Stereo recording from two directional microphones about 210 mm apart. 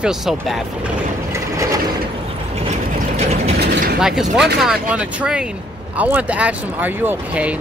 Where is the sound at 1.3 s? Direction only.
15° right (ahead or behind).